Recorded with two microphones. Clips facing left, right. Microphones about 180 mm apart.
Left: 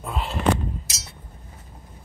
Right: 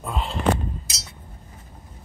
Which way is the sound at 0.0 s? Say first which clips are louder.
Right 1 dB; 5° left (ahead or behind).